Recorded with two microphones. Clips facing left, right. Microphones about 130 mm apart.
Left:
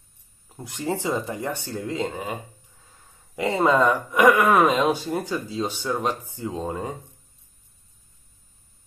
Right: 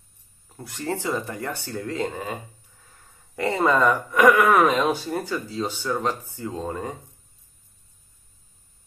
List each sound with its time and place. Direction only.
0.6 s speech: 15° left (ahead or behind)
3.3 s speech: 20° left (ahead or behind)